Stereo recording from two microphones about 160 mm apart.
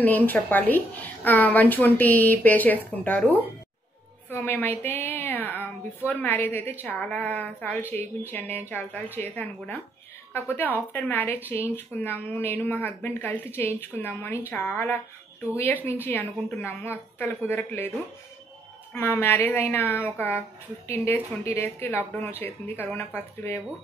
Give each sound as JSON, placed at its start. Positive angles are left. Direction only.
{"t": 0.0, "sound": "a woman's voice", "side_deg": 10}
{"t": 18.9, "sound": "a woman's voice", "side_deg": 15}